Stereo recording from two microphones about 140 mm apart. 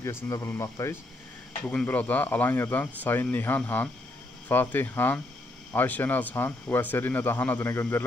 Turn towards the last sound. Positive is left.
turn(degrees=20)  # may be behind; listen again after turning